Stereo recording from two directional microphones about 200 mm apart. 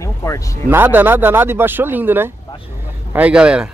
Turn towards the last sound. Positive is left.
turn(degrees=-5)  # may be behind; listen again after turning